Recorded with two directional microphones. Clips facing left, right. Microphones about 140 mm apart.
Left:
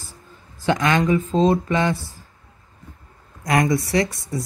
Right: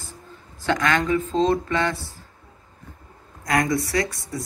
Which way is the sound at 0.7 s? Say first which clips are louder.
Left 3 dB; 20° left (ahead or behind).